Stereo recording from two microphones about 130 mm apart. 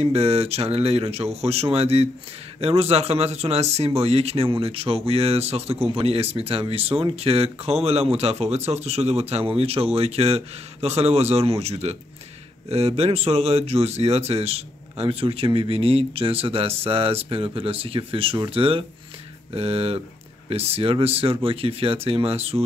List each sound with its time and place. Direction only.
0.0 s speech: 50° right (ahead or behind)